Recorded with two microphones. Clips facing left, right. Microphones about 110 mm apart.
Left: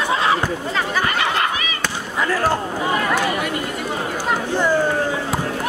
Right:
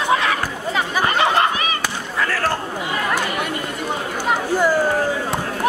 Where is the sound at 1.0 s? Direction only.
30° right (ahead or behind).